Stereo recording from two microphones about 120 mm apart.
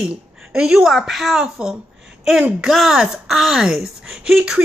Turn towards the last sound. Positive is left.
turn(degrees=-5)  # may be behind; listen again after turning